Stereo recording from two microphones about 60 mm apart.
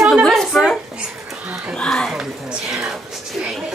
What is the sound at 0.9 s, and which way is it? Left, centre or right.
Babbling, centre.